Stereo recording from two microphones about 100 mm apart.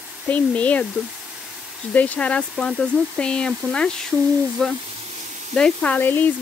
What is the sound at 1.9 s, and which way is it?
Speech, 15° left (ahead or behind).